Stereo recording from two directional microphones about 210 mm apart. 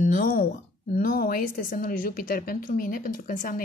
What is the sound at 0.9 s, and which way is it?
Speech, 45° left (ahead or behind).